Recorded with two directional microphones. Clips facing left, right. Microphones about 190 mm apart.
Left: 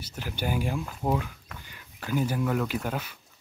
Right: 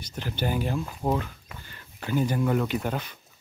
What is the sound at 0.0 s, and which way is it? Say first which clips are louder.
Speech: right 2 dB; 5° left (ahead or behind).